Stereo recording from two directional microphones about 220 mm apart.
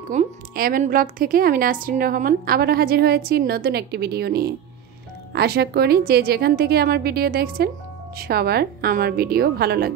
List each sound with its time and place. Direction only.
0.1 s a woman's voice: 35° right (ahead or behind)